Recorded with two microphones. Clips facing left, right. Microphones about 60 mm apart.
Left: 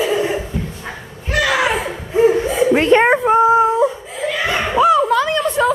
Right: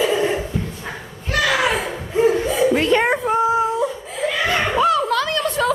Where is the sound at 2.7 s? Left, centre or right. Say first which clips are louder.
Left 9 dB; left.